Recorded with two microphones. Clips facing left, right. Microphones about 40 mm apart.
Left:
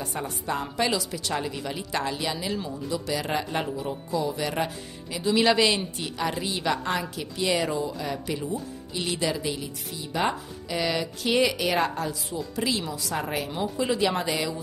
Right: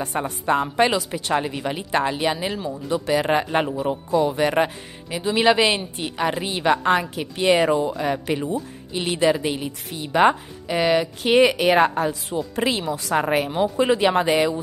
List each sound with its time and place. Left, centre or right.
0.0 s a woman's voice: right
2.9 s a woman's voice: right
8.9 s a woman's voice: right